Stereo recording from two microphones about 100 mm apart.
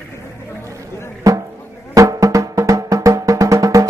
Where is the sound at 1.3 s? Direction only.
35° right (ahead or behind).